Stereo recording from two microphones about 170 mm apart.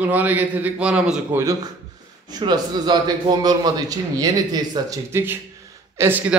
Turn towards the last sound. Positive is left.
turn(degrees=-10)  # may be behind; listen again after turning